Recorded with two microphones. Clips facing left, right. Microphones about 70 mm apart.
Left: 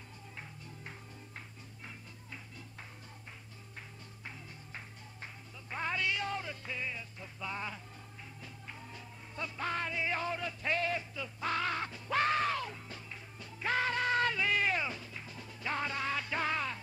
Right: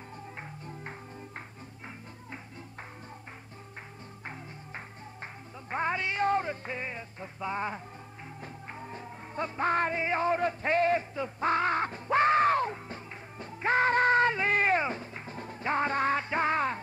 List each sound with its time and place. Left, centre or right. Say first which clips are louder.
4.3 s music: right 6 dB; right